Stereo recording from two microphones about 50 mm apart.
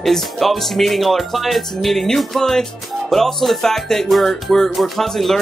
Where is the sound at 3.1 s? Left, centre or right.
Centre.